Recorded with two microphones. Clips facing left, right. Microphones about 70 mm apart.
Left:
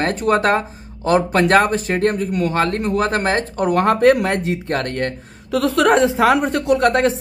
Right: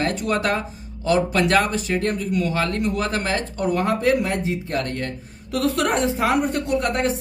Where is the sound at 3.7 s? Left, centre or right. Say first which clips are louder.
Left 6 dB; left.